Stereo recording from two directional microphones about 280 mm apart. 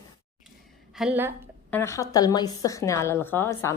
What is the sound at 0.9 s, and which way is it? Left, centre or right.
Speech, centre.